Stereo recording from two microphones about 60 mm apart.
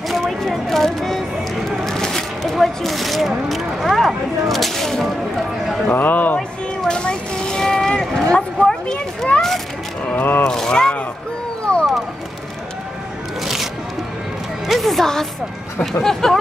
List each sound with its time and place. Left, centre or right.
0.5 s a sound: centre
5.9 s a man's voice: left
6.8 s a sound: centre
9.3 s speech: left
10.1 s speech: left
10.4 s speech: centre
11.7 s wild animals: centre
14.7 s music: centre
16.0 s speech: centre